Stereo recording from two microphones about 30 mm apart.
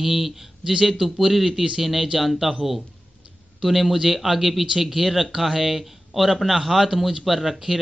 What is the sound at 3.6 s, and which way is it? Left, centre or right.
A man's voice, centre.